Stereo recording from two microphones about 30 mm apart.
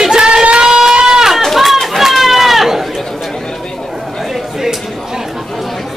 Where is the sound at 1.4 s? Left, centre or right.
Centre.